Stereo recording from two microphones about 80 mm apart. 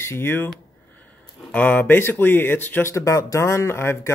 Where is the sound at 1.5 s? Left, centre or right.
Centre.